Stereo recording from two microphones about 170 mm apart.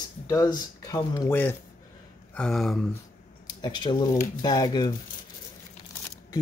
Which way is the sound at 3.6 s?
25° left (ahead or behind).